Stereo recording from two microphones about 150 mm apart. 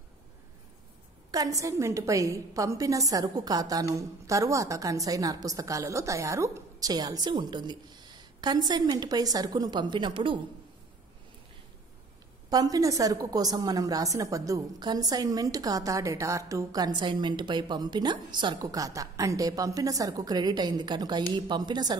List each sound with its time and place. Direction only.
1.3 s a woman's voice: 20° right (ahead or behind)
12.4 s a woman's voice: 25° right (ahead or behind)